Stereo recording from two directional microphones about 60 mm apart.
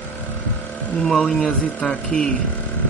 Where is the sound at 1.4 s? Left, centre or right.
Left.